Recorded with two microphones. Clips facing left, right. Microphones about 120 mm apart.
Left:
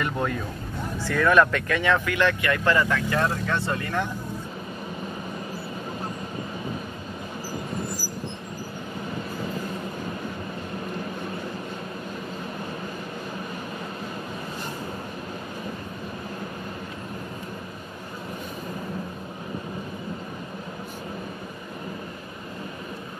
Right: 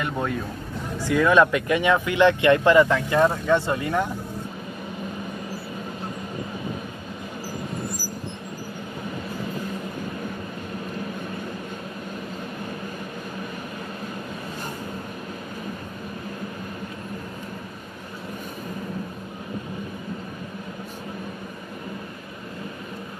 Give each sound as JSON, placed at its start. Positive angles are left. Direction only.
{"t": 0.0, "sound": "music", "side_deg": -5}
{"t": 1.0, "sound": "speech", "side_deg": -15}